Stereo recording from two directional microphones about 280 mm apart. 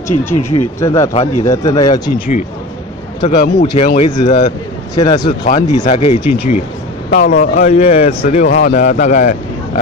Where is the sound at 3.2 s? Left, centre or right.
Centre.